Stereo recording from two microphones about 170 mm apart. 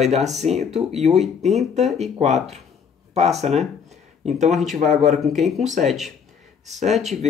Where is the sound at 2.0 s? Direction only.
40° right (ahead or behind).